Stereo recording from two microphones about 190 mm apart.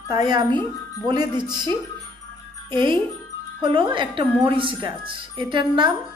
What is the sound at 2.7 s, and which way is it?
Speech, 25° right (ahead or behind).